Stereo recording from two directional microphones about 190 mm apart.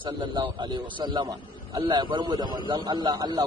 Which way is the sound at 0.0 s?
25° right (ahead or behind).